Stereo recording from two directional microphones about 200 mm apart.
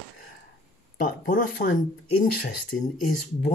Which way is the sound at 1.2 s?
45° left (ahead or behind).